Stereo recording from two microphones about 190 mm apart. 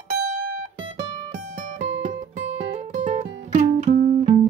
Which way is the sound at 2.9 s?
40° right (ahead or behind).